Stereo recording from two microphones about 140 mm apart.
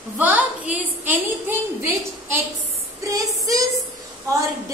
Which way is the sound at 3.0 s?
25° right (ahead or behind).